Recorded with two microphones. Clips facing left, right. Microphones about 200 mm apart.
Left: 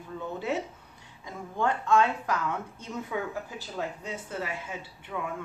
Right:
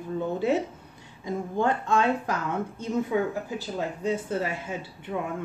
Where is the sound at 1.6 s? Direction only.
30° right (ahead or behind).